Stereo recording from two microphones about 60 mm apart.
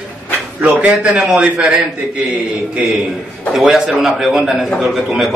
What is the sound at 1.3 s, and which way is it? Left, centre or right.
Speech, centre.